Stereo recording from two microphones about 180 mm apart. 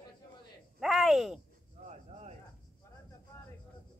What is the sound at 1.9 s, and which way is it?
Cricket, 35° right (ahead or behind).